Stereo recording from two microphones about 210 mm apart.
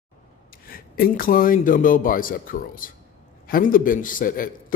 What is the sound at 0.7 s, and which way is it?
A man's voice, 45° left (ahead or behind).